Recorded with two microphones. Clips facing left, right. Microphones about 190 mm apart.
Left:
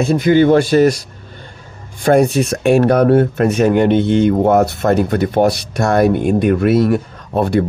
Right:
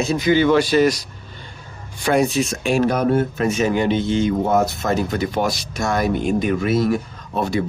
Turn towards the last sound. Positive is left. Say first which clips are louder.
# left 6 dB
turn(degrees=60)  # may be behind; listen again after turning